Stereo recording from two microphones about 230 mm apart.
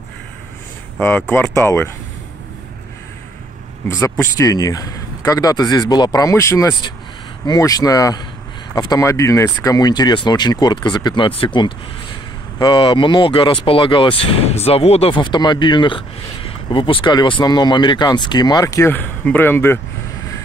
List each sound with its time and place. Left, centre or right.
0.9 s speech: centre
3.9 s speech: centre